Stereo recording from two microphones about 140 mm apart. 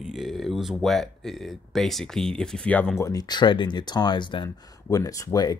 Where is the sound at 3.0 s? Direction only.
25° left (ahead or behind).